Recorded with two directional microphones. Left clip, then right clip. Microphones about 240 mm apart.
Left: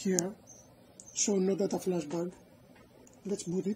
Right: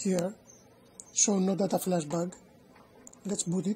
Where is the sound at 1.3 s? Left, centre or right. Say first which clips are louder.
Left 1 dB; right.